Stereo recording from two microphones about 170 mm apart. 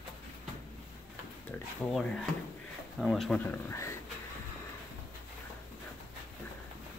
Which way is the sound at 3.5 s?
15° left (ahead or behind).